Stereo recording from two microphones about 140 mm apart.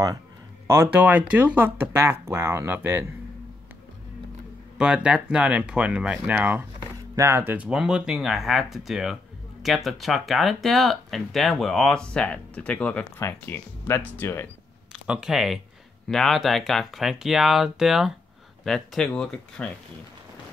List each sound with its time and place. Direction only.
0.7 s speech: 15° right (ahead or behind)
4.7 s speech: 5° right (ahead or behind); by 14.5 s 15° left (ahead or behind)
14.9 s speech: 5° right (ahead or behind)